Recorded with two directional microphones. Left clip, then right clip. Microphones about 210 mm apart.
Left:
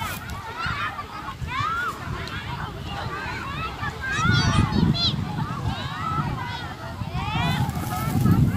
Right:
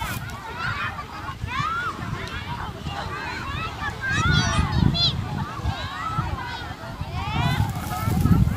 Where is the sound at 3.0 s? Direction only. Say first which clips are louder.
Even; 45° right (ahead or behind); by 5.1 s 25° right (ahead or behind).